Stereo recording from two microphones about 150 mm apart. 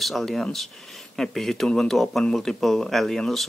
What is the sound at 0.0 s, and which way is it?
Speech, centre (ahead or behind).